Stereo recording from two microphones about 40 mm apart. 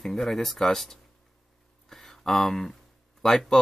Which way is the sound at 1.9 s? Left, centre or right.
Centre.